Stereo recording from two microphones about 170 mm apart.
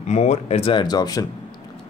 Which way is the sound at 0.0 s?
40° left (ahead or behind).